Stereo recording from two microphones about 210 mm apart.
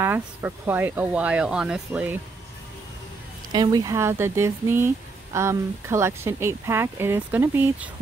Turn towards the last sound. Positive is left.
turn(degrees=-10)  # may be behind; listen again after turning